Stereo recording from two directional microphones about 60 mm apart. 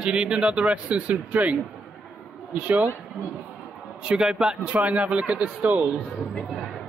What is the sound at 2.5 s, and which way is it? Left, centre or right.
Speech, right.